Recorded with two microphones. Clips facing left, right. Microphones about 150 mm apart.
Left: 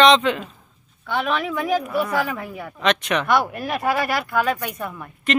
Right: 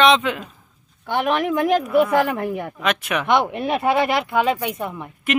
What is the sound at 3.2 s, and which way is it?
Speech, 20° right (ahead or behind).